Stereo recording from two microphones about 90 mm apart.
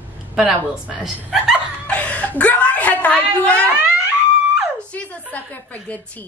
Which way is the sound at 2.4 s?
15° left (ahead or behind).